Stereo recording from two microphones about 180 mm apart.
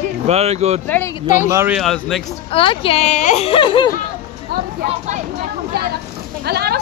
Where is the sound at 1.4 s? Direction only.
15° right (ahead or behind).